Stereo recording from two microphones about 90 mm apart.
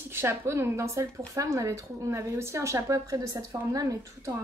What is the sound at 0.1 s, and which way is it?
A woman's voice, 25° right (ahead or behind).